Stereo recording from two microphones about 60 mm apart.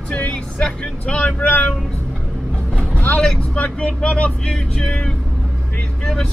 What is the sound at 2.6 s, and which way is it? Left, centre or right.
Vehicle, centre.